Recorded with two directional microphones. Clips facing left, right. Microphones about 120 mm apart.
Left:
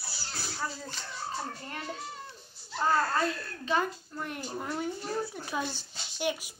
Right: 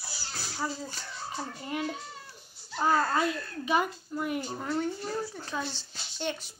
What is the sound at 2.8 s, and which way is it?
A child's voice, 15° right (ahead or behind).